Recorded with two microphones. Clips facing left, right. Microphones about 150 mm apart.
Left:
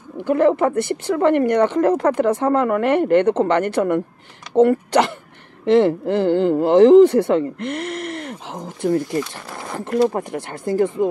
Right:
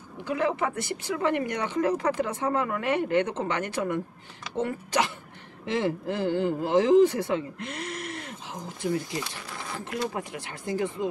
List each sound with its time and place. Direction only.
0.2 s speech: 55° left (ahead or behind)